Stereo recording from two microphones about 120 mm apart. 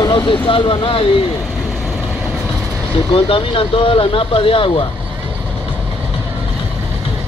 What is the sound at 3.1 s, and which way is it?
Speech, 45° left (ahead or behind).